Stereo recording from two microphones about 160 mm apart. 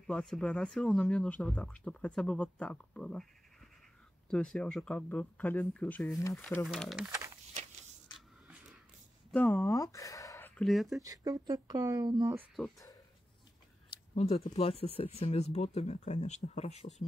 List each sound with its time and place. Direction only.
0.0 s speech: 5° left (ahead or behind)
4.3 s speech: 5° left (ahead or behind)
6.6 s speech: centre (ahead or behind)
9.3 s speech: 10° left (ahead or behind)
10.6 s speech: centre (ahead or behind)
11.0 s speech: 20° right (ahead or behind)
14.1 s speech: 40° left (ahead or behind)